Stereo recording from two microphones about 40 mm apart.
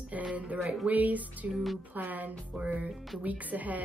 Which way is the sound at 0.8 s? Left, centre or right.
Right.